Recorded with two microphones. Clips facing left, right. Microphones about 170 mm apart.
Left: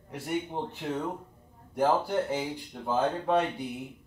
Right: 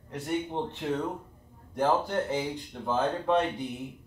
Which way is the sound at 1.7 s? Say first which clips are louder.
Left 1 dB; 10° left (ahead or behind).